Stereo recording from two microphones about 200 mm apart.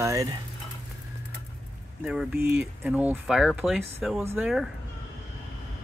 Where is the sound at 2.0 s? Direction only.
5° right (ahead or behind).